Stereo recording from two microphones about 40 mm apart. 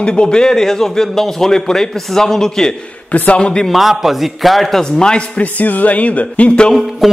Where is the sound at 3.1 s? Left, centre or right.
Left.